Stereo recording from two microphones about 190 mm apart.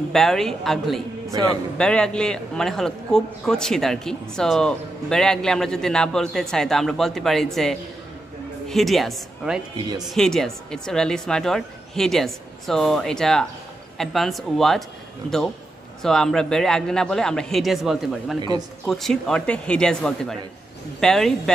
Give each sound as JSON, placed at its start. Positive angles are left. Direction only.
{"t": 0.1, "sound": "a man's voice", "side_deg": 0}
{"t": 1.3, "sound": "speech", "side_deg": -20}
{"t": 1.8, "sound": "a man's voice", "side_deg": 5}
{"t": 8.6, "sound": "a woman's voice", "side_deg": 0}